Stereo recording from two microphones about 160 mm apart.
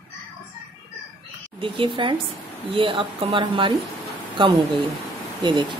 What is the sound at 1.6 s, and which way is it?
A woman's voice, 30° right (ahead or behind).